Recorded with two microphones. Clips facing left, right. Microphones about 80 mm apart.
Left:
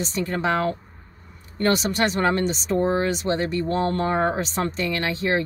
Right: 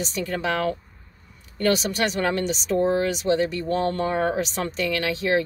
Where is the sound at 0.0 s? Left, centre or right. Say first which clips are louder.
Left 2 dB; left.